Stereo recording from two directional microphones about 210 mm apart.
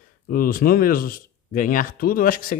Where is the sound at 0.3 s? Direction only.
45° left (ahead or behind).